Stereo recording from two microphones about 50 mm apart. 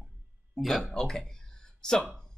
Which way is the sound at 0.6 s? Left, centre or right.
Centre.